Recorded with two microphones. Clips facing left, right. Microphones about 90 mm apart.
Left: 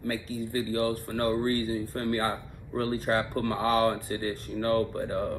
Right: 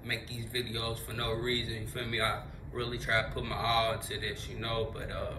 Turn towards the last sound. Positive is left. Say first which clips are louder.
# left 7 dB
turn(degrees=45)  # may be behind; listen again after turning